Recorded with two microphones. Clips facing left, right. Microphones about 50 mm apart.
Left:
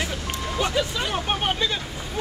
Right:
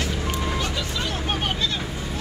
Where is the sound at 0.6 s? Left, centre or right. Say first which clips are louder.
Left 3 dB; centre.